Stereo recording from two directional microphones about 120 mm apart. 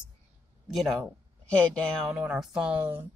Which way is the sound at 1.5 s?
10° left (ahead or behind).